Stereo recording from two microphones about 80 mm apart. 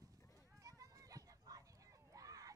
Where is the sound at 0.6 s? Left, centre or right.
Right.